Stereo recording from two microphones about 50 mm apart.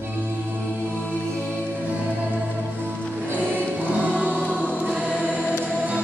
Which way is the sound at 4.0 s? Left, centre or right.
Right.